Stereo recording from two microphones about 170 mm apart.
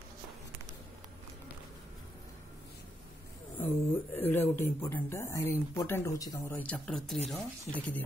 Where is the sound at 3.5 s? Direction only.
10° left (ahead or behind).